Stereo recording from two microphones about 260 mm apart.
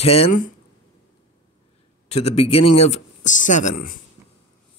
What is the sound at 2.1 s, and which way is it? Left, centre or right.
A man's voice, left.